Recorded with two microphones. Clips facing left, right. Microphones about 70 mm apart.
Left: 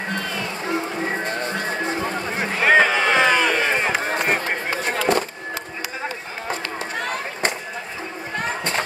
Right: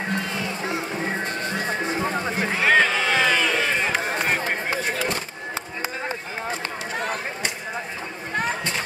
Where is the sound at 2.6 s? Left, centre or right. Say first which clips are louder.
Left 3 dB; centre.